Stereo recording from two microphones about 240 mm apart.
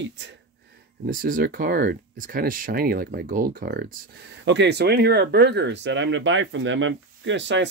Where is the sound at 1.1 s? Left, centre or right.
Right.